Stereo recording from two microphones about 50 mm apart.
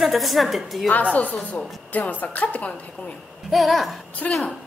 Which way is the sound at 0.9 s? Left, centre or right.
Left.